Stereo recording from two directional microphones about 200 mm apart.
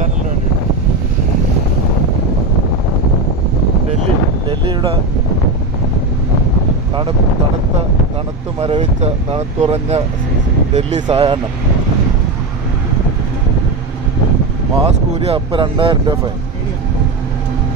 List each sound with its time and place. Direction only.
4.5 s wind noise: 25° right (ahead or behind)
8.5 s speech: 30° right (ahead or behind)
11.1 s speech: 20° right (ahead or behind)
14.8 s speech: 30° right (ahead or behind)